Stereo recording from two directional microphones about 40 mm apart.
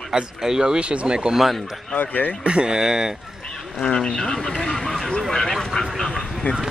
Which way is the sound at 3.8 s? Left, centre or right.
Left.